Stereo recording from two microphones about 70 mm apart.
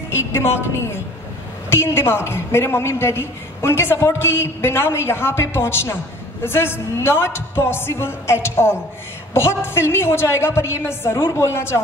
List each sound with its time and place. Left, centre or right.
0.3 s a woman's voice: left